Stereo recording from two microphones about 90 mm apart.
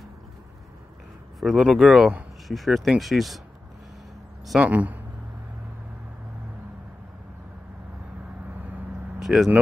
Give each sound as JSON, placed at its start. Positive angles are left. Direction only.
{"t": 1.4, "sound": "speech", "side_deg": 0}
{"t": 4.6, "sound": "a man's voice", "side_deg": -15}
{"t": 9.2, "sound": "speech", "side_deg": -5}